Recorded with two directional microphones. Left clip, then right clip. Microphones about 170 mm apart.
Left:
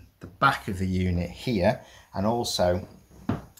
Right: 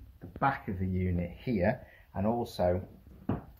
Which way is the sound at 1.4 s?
35° left (ahead or behind).